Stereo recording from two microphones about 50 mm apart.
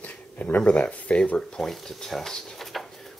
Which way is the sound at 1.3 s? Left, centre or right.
Centre.